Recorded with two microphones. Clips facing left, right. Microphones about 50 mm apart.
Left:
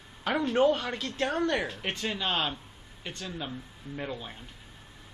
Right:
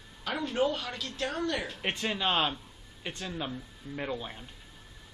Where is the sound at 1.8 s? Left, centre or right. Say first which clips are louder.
Right 1 dB; centre.